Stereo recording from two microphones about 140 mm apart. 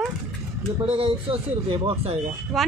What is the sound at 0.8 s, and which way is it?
A man's voice, 45° right (ahead or behind).